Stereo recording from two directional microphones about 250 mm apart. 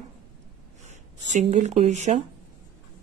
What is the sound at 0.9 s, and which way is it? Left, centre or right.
Speech, right.